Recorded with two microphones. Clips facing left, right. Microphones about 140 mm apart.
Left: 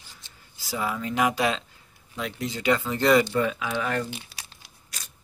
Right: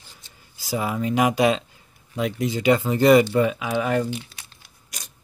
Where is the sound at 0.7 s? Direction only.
20° right (ahead or behind).